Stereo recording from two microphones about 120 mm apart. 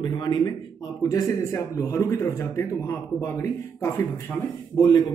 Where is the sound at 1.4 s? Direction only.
25° left (ahead or behind).